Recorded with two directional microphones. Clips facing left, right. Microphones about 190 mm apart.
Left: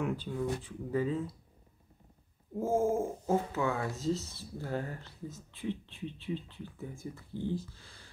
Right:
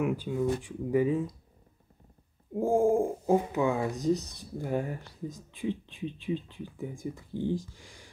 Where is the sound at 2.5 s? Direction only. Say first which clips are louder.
Right 5 dB; 15° right (ahead or behind).